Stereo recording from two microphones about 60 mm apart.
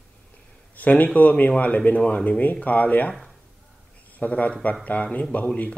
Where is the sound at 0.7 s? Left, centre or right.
Left.